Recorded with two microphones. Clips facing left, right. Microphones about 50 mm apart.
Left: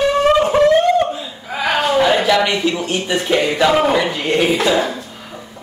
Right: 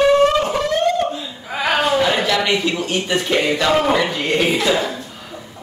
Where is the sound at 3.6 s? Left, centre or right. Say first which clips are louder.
Left 3 dB; centre.